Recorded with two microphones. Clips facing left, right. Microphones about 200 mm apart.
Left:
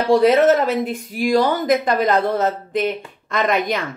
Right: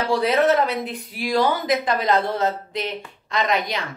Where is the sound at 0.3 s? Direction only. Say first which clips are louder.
Left 4 dB; 45° left (ahead or behind).